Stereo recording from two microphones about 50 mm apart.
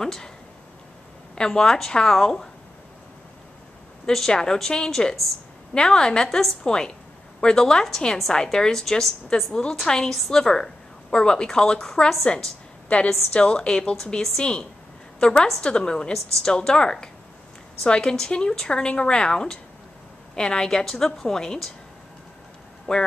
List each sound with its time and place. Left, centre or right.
0.0 s a woman's voice: centre
1.3 s a woman's voice: centre
4.1 s a woman's voice: centre
12.8 s a woman's voice: left
22.9 s a woman's voice: centre